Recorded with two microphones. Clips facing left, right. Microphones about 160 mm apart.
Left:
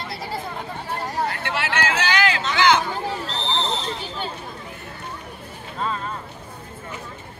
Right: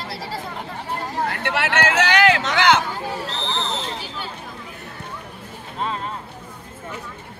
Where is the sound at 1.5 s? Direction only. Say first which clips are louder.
Right 3 dB; 65° right (ahead or behind).